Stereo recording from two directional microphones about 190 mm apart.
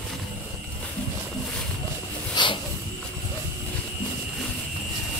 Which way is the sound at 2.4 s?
25° left (ahead or behind).